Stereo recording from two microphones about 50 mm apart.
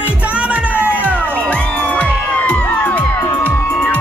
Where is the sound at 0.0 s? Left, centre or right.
Right.